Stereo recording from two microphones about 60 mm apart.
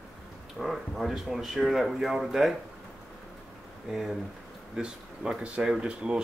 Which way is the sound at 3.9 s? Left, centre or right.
Centre.